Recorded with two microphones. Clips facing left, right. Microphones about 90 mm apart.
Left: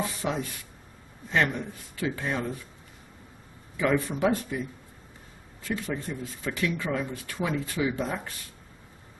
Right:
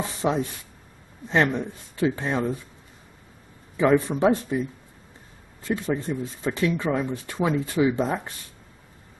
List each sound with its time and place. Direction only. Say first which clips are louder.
0.0 s speech: right 5 dB; 25° right (ahead or behind)
3.7 s speech: right 6 dB; 25° right (ahead or behind)
5.8 s speech: right 6 dB; 25° right (ahead or behind)